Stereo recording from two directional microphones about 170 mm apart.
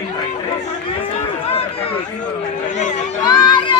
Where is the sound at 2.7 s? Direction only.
45° left (ahead or behind).